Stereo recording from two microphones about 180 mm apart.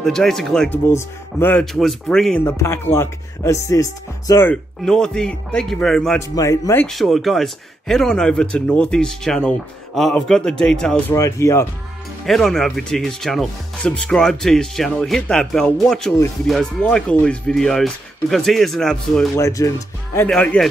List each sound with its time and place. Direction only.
0.0 s a man's voice: centre (ahead or behind)
2.4 s a man's voice: 15° left (ahead or behind)
6.1 s speech: 20° left (ahead or behind)
6.9 s a man's voice: centre (ahead or behind)
11.1 s speech: 15° left (ahead or behind)
12.3 s a man's voice: centre (ahead or behind)
19.3 s speech: 15° left (ahead or behind)
20.2 s a man's voice: 5° left (ahead or behind)